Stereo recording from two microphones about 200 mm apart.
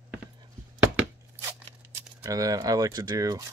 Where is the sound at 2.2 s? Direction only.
15° right (ahead or behind).